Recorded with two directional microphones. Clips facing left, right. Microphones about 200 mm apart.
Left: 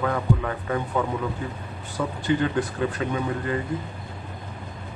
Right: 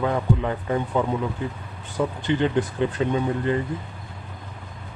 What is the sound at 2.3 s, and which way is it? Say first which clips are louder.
A man's voice: even; 20° right (ahead or behind).